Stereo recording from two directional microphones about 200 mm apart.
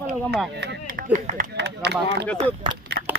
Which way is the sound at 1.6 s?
60° right (ahead or behind).